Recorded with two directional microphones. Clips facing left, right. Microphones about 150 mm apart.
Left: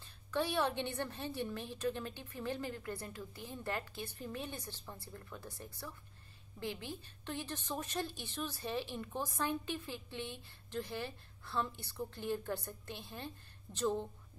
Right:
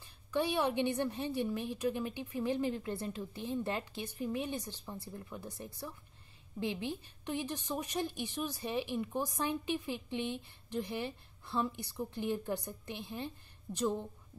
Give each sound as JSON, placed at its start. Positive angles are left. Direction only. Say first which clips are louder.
{"t": 0.0, "sound": "a woman's voice", "louder": "right 3 dB", "side_deg": -15}